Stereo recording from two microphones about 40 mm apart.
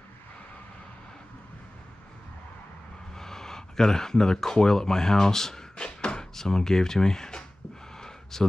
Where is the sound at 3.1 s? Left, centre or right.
Centre.